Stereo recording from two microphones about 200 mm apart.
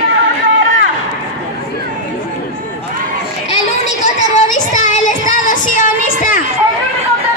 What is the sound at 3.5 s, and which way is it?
Child singing, 35° left (ahead or behind).